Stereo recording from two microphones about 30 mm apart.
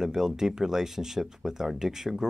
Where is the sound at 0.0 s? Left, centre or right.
Centre.